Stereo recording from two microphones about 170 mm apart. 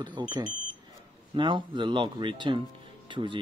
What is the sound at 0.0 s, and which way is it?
A man's voice, 25° right (ahead or behind).